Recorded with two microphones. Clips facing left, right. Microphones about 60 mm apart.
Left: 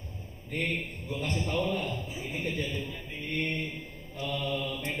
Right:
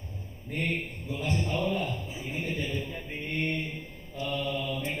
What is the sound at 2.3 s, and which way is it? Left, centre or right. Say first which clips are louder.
Speech: right 1 dB; right.